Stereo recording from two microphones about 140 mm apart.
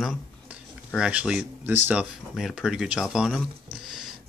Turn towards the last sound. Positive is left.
turn(degrees=0)  # may be behind; listen again after turning